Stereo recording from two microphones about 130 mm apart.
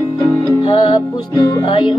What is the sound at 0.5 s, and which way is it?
Music, 45° left (ahead or behind).